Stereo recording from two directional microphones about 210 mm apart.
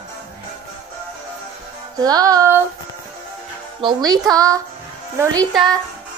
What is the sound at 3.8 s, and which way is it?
Speech, 20° right (ahead or behind).